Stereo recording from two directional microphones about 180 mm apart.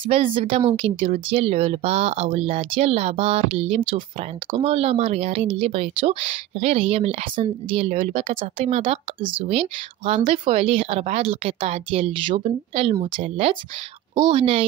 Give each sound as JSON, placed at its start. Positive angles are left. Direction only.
{"t": 0.0, "sound": "a woman's voice", "side_deg": -30}